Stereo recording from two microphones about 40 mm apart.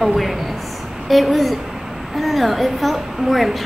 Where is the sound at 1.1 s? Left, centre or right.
Centre.